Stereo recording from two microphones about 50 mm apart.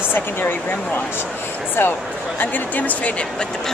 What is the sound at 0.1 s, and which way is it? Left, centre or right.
Speech, left.